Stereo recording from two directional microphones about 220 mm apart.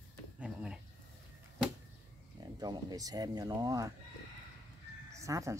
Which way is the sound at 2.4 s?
15° right (ahead or behind).